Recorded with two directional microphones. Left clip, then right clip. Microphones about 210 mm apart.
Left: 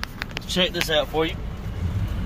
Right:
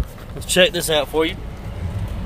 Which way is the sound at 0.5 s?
50° right (ahead or behind).